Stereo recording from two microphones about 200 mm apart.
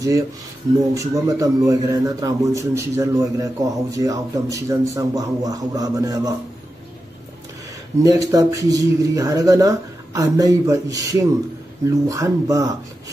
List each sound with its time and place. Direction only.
0.7 s a man's voice: 15° right (ahead or behind)
8.0 s a man's voice: 15° right (ahead or behind)